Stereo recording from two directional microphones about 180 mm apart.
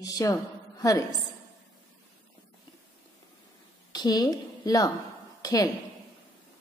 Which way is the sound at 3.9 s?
20° left (ahead or behind).